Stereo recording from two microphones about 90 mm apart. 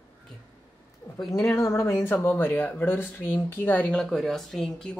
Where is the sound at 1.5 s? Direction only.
35° left (ahead or behind).